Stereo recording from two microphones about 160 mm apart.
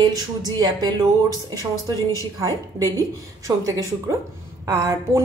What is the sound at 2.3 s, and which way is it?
Speech, 20° right (ahead or behind).